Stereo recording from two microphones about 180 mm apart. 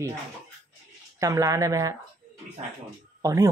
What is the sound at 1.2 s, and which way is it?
Speech, 20° right (ahead or behind).